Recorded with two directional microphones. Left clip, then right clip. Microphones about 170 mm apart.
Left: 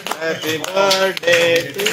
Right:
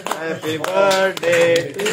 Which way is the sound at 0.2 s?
20° left (ahead or behind).